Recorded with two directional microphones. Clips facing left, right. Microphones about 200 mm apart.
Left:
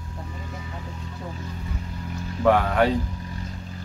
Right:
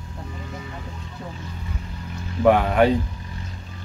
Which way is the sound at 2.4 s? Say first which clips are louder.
Right 3 dB; 15° right (ahead or behind).